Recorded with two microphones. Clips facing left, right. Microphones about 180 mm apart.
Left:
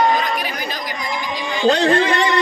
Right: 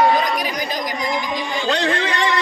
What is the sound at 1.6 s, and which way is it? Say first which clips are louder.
Speech: left 7 dB; 35° left (ahead or behind).